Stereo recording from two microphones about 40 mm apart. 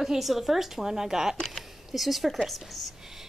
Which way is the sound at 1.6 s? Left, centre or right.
Centre.